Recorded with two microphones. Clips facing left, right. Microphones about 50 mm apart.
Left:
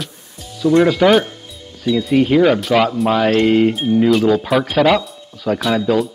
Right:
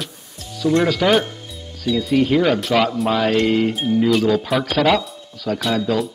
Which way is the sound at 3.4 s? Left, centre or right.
Left.